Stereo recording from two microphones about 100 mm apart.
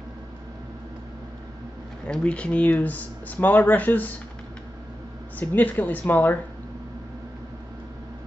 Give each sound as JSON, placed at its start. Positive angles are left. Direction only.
{"t": 2.0, "sound": "speech", "side_deg": 10}
{"t": 5.4, "sound": "speech", "side_deg": 15}